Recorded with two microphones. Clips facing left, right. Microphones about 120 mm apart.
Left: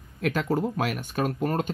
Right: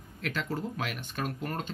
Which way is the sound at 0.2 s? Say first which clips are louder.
Left 8 dB; 50° left (ahead or behind).